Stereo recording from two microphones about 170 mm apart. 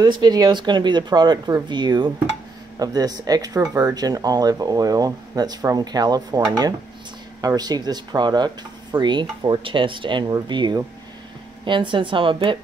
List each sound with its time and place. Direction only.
0.0 s speech: 25° right (ahead or behind)
7.4 s speech: 25° right (ahead or behind)